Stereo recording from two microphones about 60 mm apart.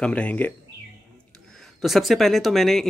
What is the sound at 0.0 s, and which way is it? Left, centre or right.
Speech, left.